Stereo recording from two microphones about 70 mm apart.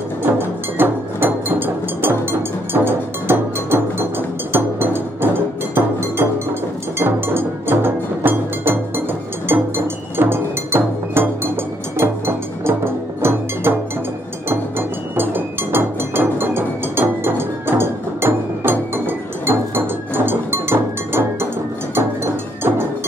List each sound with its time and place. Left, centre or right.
0.2 s music: right
7.0 s music: right
10.1 s music: right
20.2 s cowbell: right
21.9 s music: right